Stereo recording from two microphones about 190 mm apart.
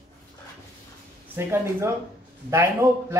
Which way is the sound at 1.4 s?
10° right (ahead or behind).